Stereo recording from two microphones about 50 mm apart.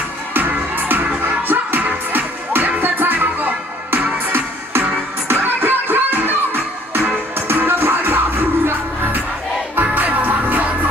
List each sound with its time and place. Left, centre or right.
0.3 s music: right